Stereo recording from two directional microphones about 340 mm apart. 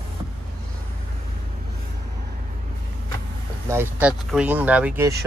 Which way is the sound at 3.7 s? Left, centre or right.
Centre.